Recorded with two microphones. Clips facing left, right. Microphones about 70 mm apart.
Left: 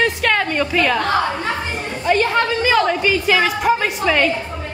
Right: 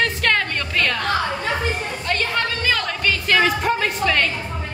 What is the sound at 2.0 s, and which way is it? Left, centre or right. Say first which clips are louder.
A woman's voice: left 8 dB; centre.